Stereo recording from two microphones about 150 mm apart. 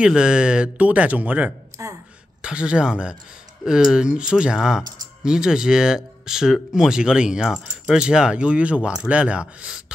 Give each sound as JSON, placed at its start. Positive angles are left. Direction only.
{"t": 0.0, "sound": "speech", "side_deg": -5}